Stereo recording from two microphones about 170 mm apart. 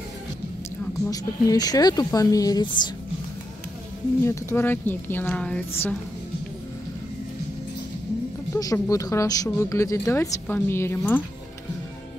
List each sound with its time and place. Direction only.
1.1 s speech: 20° left (ahead or behind)
4.2 s speech: 15° left (ahead or behind)
8.5 s speech: 20° left (ahead or behind)